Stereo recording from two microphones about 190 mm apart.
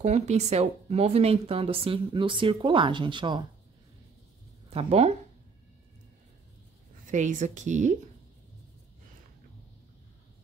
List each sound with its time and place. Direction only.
0.0 s speech: 35° right (ahead or behind)
4.6 s speech: 30° right (ahead or behind)
7.1 s speech: 40° right (ahead or behind)